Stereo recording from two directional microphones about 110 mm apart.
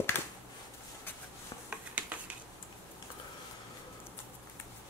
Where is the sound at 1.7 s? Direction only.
15° right (ahead or behind).